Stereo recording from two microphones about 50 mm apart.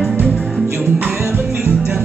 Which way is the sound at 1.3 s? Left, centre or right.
Right.